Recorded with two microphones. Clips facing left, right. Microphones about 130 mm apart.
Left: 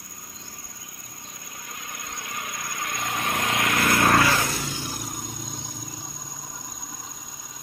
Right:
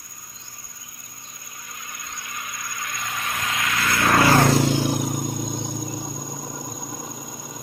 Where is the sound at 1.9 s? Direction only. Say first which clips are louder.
Left 1 dB; 55° left (ahead or behind).